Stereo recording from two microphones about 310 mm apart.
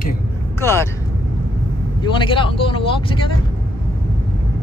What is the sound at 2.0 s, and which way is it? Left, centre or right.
Speech, centre.